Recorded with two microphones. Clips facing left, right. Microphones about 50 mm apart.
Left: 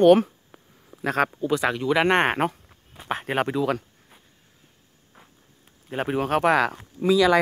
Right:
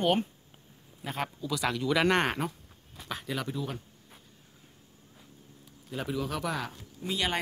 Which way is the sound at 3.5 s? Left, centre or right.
Left.